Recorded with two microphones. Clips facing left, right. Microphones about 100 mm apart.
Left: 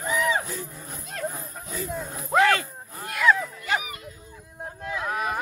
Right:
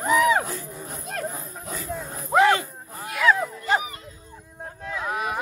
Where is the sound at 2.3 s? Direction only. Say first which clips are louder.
Right 2 dB; 20° right (ahead or behind).